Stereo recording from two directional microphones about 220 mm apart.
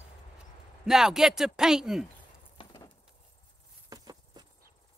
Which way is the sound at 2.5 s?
20° left (ahead or behind).